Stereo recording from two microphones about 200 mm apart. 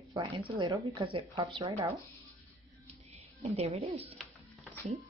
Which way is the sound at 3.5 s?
30° right (ahead or behind).